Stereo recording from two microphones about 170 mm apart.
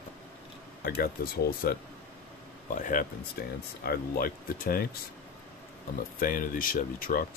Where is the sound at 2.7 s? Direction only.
50° left (ahead or behind).